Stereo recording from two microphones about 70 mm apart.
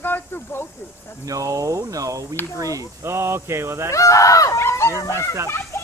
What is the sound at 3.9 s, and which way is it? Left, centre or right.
Speech, left.